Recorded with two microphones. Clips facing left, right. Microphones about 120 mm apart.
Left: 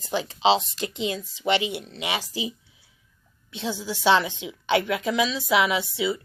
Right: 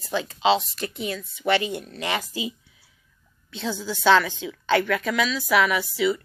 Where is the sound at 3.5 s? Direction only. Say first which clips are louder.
Right 1 dB; 20° left (ahead or behind).